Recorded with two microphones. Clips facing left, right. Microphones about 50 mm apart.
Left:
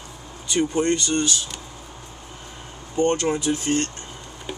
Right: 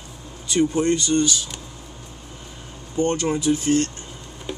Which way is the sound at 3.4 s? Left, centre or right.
Left.